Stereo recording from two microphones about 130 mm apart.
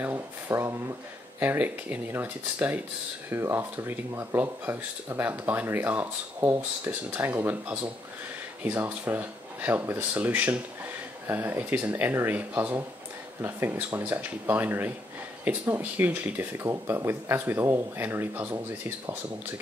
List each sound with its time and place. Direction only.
0.0 s speech: 15° right (ahead or behind)